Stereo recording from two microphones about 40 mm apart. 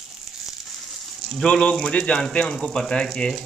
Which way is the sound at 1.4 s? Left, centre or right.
Left.